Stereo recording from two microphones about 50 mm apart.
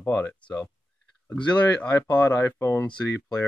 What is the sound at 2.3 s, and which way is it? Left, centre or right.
Speech, left.